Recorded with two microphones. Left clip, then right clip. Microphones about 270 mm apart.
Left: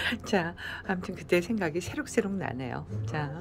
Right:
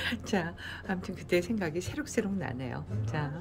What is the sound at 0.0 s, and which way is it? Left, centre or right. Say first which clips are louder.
Speech: left 4 dB; centre.